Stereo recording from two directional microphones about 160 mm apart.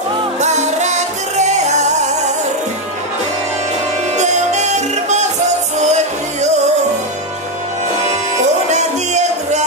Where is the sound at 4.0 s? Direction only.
45° right (ahead or behind).